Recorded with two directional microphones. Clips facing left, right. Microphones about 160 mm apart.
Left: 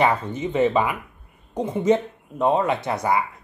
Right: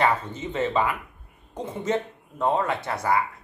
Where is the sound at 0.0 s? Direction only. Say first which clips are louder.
Left 3 dB; 15° left (ahead or behind).